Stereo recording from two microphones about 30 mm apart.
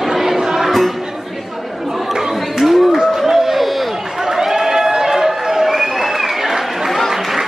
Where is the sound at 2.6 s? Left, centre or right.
Centre.